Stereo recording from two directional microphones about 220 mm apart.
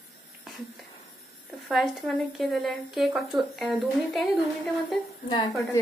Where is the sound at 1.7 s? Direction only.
Centre (ahead or behind).